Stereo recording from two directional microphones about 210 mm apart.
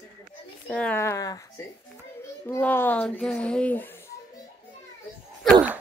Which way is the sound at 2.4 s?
10° left (ahead or behind).